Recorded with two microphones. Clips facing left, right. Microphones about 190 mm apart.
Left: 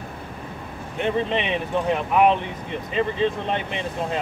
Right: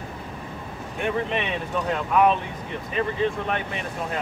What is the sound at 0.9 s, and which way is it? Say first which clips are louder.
Speech: left 3 dB; 20° left (ahead or behind).